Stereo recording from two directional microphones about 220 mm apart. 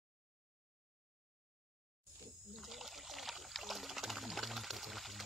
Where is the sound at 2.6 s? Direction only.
Centre (ahead or behind).